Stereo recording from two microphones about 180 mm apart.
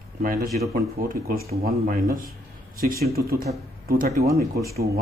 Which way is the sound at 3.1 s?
60° right (ahead or behind).